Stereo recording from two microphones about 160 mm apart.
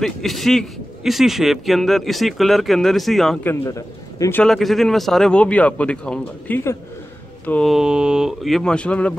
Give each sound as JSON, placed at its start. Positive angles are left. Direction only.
{"t": 0.0, "sound": "speech", "side_deg": 0}
{"t": 3.4, "sound": "a man's voice", "side_deg": 20}
{"t": 4.4, "sound": "a man's voice", "side_deg": 0}
{"t": 7.7, "sound": "speech", "side_deg": -5}